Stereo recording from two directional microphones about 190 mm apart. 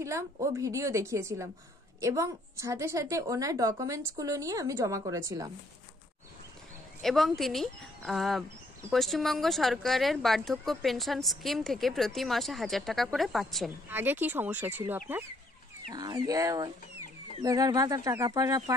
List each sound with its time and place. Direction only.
0.0 s a woman's voice: 15° right (ahead or behind)
7.0 s speech: centre (ahead or behind)
13.8 s a woman's voice: 10° right (ahead or behind)
15.9 s speech: 20° right (ahead or behind)